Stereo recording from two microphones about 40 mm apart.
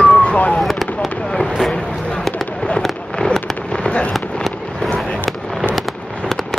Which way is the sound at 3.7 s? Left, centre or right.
Left.